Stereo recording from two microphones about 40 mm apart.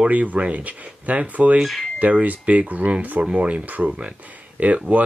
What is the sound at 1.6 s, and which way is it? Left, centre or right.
Speech, centre.